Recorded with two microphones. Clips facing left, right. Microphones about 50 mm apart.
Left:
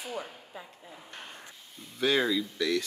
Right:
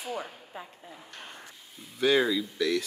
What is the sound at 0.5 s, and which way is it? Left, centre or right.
Speech, right.